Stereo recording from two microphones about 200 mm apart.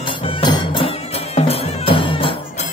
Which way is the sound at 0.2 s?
25° left (ahead or behind).